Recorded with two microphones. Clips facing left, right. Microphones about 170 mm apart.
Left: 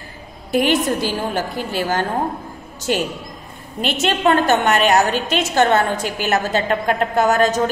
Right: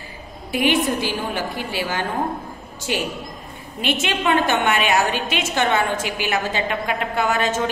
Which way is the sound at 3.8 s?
45° left (ahead or behind).